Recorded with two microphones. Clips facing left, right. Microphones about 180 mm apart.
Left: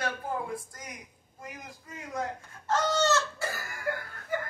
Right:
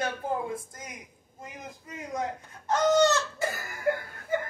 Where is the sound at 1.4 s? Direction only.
20° right (ahead or behind).